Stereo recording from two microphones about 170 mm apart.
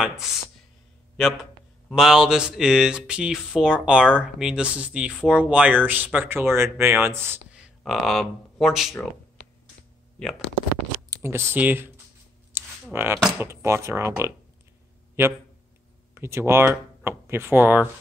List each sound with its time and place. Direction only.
1.1 s speech: centre (ahead or behind)
7.5 s speech: centre (ahead or behind)
10.2 s speech: 5° left (ahead or behind)
11.1 s speech: 15° right (ahead or behind)
12.5 s a sound: 15° right (ahead or behind)
13.4 s speech: 15° right (ahead or behind)
16.2 s speech: 15° right (ahead or behind)